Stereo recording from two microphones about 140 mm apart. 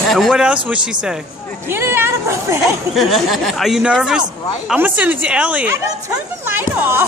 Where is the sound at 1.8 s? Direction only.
20° right (ahead or behind).